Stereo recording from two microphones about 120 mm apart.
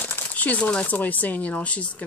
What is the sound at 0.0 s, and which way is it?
Speech, 15° left (ahead or behind).